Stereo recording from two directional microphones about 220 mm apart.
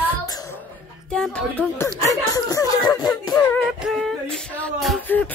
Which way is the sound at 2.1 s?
15° left (ahead or behind).